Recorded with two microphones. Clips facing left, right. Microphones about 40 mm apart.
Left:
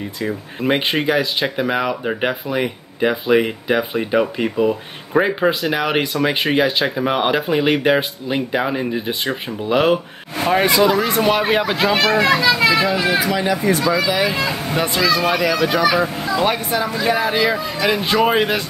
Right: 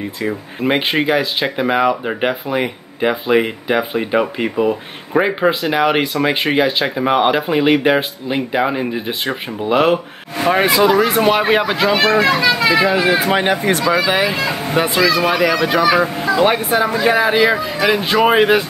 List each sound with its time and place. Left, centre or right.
0.6 s speech: centre
11.9 s speech: right
14.4 s speech: right
15.8 s speech: right
16.3 s speech: right